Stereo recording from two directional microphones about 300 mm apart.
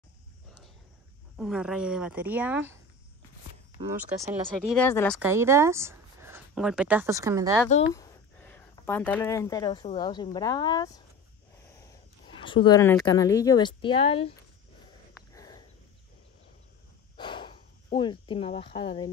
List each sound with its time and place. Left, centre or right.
1.3 s speech: centre
4.2 s speech: centre
4.7 s speech: centre
7.9 s speech: centre
15.3 s a sound: centre
17.2 s cricket: centre